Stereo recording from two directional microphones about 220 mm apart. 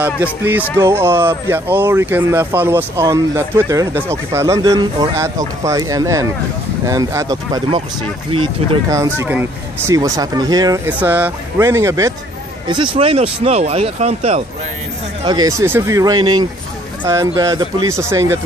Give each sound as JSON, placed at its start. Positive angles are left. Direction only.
{"t": 0.0, "sound": "speech", "side_deg": -10}
{"t": 15.2, "sound": "speech", "side_deg": -15}